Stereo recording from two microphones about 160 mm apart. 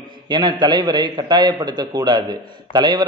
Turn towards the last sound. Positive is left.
turn(degrees=-25)  # may be behind; listen again after turning